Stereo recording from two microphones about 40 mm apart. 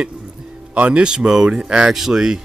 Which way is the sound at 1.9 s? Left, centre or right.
Centre.